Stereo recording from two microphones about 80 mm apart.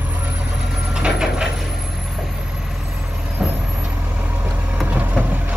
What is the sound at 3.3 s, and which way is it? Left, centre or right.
Vehicle, centre.